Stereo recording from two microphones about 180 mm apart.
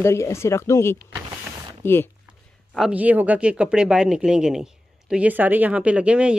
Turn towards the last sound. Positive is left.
turn(degrees=-5)  # may be behind; listen again after turning